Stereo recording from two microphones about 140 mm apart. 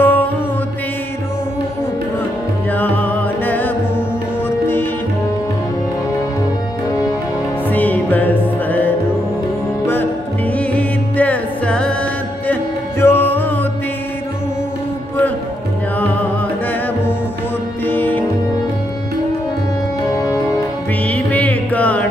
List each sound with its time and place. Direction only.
0.0 s music: 15° left (ahead or behind)
2.7 s music: 15° left (ahead or behind)
7.7 s music: 10° left (ahead or behind)
10.6 s music: 10° left (ahead or behind)
16.0 s music: 10° left (ahead or behind)
17.8 s music: 10° left (ahead or behind)
20.2 s music: 25° left (ahead or behind)
21.1 s music: 10° left (ahead or behind)